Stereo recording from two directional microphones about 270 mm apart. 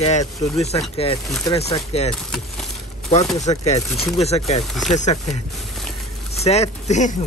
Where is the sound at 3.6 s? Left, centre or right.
Left.